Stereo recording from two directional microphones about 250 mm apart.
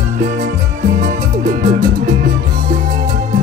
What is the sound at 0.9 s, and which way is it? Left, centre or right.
Music, right.